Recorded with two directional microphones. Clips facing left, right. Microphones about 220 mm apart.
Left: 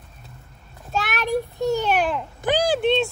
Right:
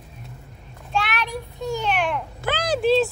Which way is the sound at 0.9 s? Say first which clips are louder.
Even; 45° left (ahead or behind).